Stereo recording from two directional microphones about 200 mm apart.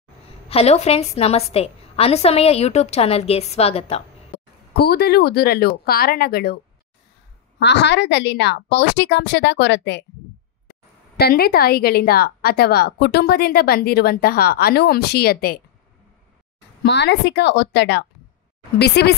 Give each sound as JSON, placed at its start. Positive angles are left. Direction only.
{"t": 0.5, "sound": "a woman's voice", "side_deg": 30}
{"t": 4.7, "sound": "a woman's voice", "side_deg": 50}
{"t": 11.1, "sound": "a woman's voice", "side_deg": 50}
{"t": 16.8, "sound": "a woman's voice", "side_deg": 60}